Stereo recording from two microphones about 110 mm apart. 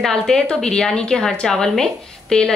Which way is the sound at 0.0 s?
5° left (ahead or behind).